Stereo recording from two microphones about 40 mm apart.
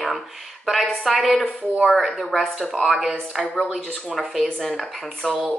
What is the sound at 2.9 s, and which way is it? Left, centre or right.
Speech, centre.